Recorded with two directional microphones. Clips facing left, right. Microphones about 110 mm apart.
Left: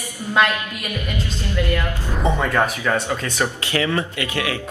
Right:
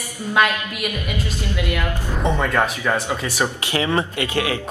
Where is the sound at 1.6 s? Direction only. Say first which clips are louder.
Left 3 dB; 15° right (ahead or behind).